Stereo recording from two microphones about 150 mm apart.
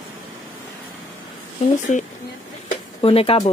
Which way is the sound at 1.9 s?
55° left (ahead or behind).